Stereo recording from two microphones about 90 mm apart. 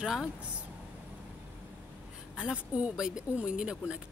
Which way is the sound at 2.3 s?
10° right (ahead or behind).